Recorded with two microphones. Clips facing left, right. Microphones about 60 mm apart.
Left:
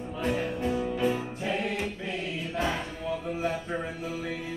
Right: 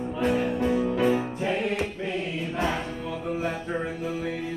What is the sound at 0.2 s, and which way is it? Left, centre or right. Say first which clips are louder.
Music: right 4 dB; right.